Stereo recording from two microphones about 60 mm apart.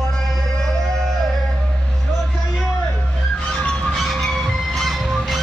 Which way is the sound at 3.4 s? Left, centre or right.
Centre.